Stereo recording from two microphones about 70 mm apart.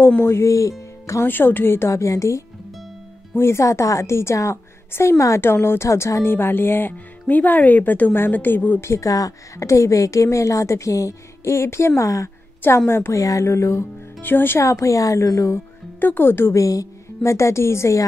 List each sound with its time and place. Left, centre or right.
0.0 s speech: left
1.2 s a woman's voice: left
6.3 s speech: left
8.8 s a woman's voice: left
12.6 s a woman's voice: left
14.2 s speech: left
14.6 s a woman's voice: left
16.0 s a woman's voice: left
16.6 s speech: left